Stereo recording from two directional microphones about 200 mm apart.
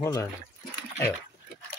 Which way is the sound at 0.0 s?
15° left (ahead or behind).